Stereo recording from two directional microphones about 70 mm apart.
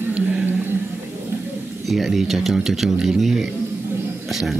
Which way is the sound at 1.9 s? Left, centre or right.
Centre.